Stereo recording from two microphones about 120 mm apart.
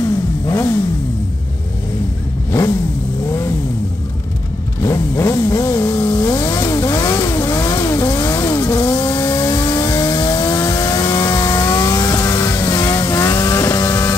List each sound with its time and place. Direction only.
0.5 s vehicle: 25° left (ahead or behind)
3.3 s vehicle: 25° left (ahead or behind)
4.8 s vehicle: 25° left (ahead or behind)